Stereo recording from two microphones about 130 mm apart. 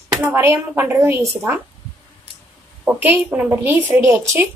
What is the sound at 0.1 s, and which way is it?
Speech, 15° right (ahead or behind).